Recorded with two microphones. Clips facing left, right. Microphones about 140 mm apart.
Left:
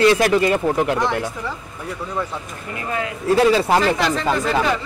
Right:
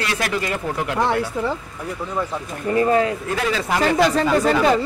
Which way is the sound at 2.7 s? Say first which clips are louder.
Right 9 dB; 35° right (ahead or behind).